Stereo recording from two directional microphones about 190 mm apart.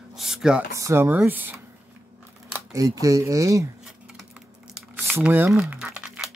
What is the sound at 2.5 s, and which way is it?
Speech, 20° right (ahead or behind).